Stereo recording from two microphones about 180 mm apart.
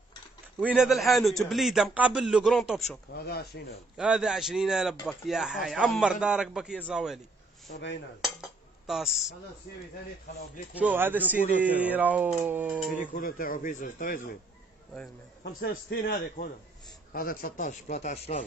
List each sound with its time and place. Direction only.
0.7 s a man's voice: centre (ahead or behind)
3.1 s a man's voice: 60° left (ahead or behind)
3.9 s a man's voice: 5° right (ahead or behind)
8.2 s dishes: centre (ahead or behind)
10.7 s speech: 10° right (ahead or behind)
13.0 s speech: 50° left (ahead or behind)
15.4 s a man's voice: 60° left (ahead or behind); by 18.4 s 40° left (ahead or behind)